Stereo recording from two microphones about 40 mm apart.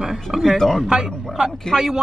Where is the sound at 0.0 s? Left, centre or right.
Centre.